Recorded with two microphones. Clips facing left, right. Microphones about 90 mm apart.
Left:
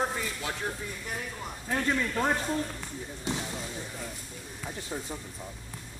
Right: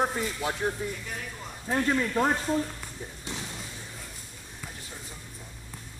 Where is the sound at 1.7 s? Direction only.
15° right (ahead or behind).